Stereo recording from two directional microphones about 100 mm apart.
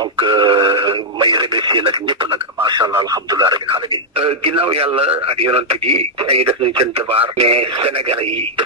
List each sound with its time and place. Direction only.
0.2 s radio: 55° right (ahead or behind)
2.6 s speech: 45° right (ahead or behind)
3.7 s speech: 65° right (ahead or behind)